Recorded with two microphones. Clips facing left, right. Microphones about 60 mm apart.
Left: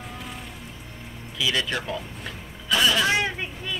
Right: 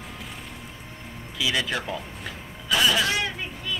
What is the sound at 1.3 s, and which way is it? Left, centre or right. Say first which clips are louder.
Speech: left 1 dB; centre.